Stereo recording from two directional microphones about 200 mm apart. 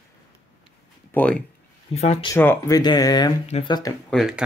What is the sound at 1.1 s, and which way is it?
Speech, 5° left (ahead or behind).